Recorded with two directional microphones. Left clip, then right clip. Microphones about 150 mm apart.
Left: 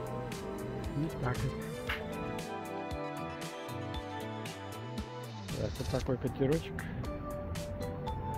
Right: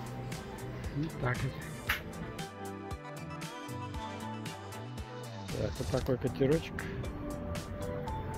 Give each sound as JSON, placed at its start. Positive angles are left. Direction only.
{"t": 5.6, "sound": "speech", "side_deg": -15}